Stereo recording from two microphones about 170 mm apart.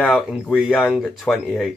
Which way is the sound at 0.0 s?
Centre (ahead or behind).